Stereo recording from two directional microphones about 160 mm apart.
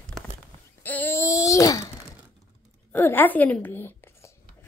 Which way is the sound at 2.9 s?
10° left (ahead or behind).